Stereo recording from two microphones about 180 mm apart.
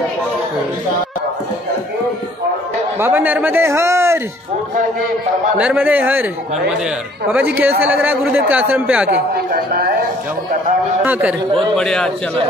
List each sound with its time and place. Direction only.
3.0 s a man's voice: 10° right (ahead or behind)
5.6 s a man's voice: 10° right (ahead or behind)
9.5 s speech: 60° right (ahead or behind)
11.1 s a man's voice: 10° right (ahead or behind)
11.7 s a man's voice: 5° left (ahead or behind)